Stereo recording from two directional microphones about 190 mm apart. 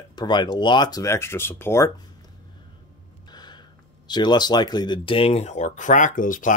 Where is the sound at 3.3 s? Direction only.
20° left (ahead or behind).